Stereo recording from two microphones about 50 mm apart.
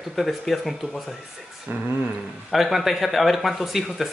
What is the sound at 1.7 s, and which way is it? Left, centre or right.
Speech, right.